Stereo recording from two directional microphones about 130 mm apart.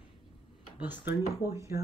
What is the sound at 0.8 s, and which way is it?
Speech, 10° right (ahead or behind).